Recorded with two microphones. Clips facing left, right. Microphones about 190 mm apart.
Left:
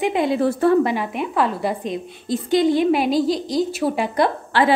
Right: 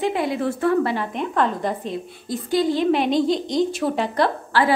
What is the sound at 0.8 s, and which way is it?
A woman's voice, 15° left (ahead or behind).